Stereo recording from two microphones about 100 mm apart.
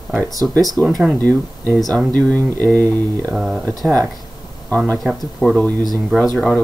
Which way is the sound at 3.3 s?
Centre (ahead or behind).